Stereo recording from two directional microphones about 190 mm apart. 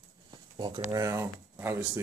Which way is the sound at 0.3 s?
25° right (ahead or behind).